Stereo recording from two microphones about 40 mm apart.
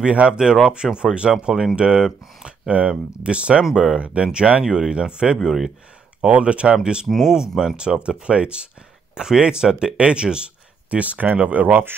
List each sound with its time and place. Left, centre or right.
0.0 s speech: right; by 1.8 s centre
1.8 s speech: right
2.7 s speech: right
3.7 s speech: centre
4.0 s speech: right
5.4 s speech: centre
6.2 s speech: right
7.1 s speech: centre
7.3 s speech: centre
11.0 s speech: right
11.7 s speech: right